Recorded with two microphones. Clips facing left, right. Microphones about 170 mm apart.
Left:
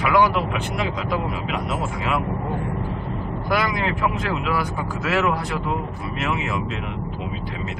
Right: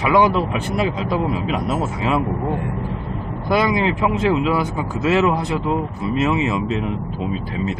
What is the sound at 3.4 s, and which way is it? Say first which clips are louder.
Speech: right 6 dB; 25° right (ahead or behind).